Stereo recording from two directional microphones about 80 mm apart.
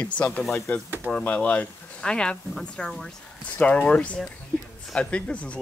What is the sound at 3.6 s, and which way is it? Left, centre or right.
Speech, centre.